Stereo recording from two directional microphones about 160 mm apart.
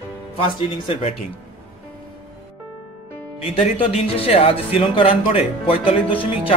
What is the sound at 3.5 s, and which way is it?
Speech, 35° left (ahead or behind).